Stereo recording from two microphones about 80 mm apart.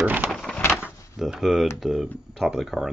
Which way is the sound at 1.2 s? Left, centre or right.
Centre.